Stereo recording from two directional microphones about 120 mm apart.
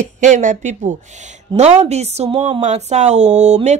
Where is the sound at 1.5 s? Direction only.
70° right (ahead or behind).